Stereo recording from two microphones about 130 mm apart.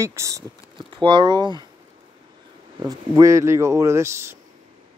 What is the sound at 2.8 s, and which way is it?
Speech, 25° right (ahead or behind).